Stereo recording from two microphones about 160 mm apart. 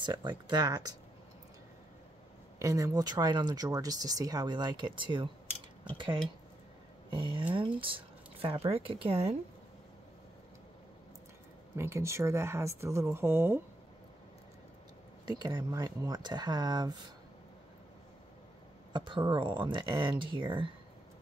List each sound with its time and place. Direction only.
0.0 s speech: 30° right (ahead or behind)
2.6 s speech: 20° right (ahead or behind); by 9.4 s 40° right (ahead or behind)
11.7 s speech: 15° right (ahead or behind)
15.2 s speech: 25° right (ahead or behind)
18.9 s speech: 30° right (ahead or behind)